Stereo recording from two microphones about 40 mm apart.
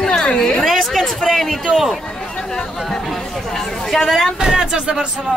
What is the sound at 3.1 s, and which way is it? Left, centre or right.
Speech, centre.